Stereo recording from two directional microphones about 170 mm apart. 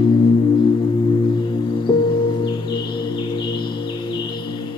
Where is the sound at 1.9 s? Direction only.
30° left (ahead or behind).